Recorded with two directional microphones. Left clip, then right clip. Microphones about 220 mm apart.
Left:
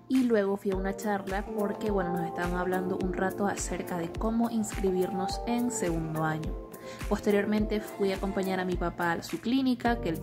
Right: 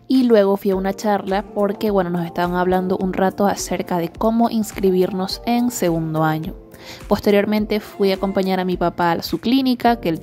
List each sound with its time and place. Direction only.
0.1 s a woman's voice: 40° right (ahead or behind)